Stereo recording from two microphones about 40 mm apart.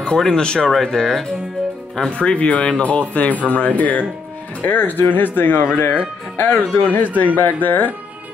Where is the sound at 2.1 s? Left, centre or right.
Left.